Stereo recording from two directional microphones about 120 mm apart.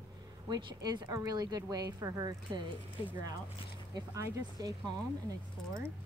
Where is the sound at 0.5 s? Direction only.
40° right (ahead or behind).